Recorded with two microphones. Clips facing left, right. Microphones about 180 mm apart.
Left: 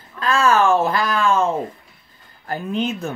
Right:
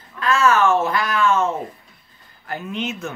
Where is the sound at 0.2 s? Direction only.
30° left (ahead or behind).